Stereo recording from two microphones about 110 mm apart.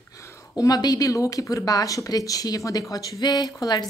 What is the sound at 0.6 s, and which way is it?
A woman's voice, 35° left (ahead or behind).